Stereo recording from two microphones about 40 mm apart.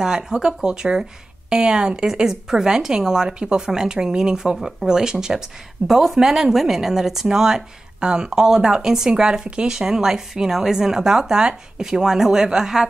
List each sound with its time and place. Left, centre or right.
0.0 s speech: centre
4.6 s speech: centre
4.8 s speech: centre